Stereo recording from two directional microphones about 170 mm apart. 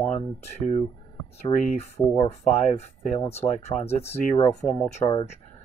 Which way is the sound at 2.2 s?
40° left (ahead or behind).